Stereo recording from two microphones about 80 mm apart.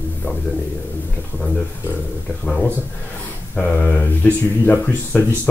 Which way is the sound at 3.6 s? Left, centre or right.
Centre.